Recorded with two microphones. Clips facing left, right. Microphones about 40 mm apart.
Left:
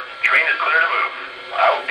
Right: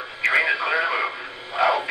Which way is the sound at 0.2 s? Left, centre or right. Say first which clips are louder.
Left 4 dB; left.